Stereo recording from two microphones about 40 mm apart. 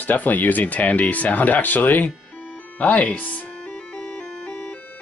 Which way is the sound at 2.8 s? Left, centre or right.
Left.